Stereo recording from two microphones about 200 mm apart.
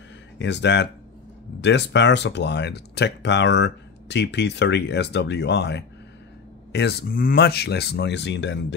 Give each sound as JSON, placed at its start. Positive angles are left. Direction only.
{"t": 0.4, "sound": "speech", "side_deg": 60}